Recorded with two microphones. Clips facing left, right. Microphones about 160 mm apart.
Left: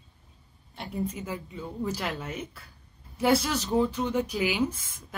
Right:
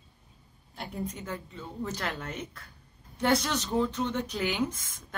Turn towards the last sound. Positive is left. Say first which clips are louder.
# left 3 dB
turn(degrees=10)  # may be behind; listen again after turning